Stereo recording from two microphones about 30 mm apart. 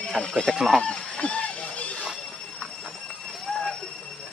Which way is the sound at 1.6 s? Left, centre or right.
Left.